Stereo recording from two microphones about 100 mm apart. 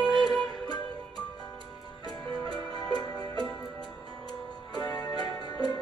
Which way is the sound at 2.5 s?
45° left (ahead or behind).